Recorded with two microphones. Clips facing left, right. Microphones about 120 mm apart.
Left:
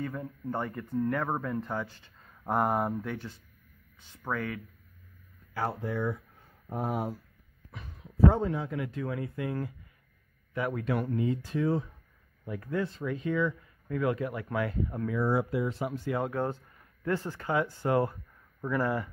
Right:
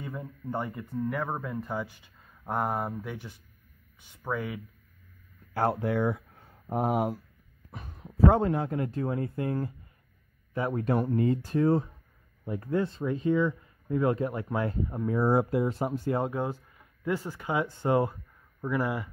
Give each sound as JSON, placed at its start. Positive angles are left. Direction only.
{"t": 0.0, "sound": "speech", "side_deg": -10}
{"t": 2.4, "sound": "speech", "side_deg": 0}
{"t": 5.7, "sound": "speech", "side_deg": -70}
{"t": 7.7, "sound": "a sound", "side_deg": -45}
{"t": 8.3, "sound": "speech", "side_deg": -60}
{"t": 8.7, "sound": "speech", "side_deg": -40}
{"t": 11.1, "sound": "speech", "side_deg": -45}
{"t": 12.4, "sound": "speech", "side_deg": -25}
{"t": 15.0, "sound": "speech", "side_deg": -40}
{"t": 16.3, "sound": "speech", "side_deg": -10}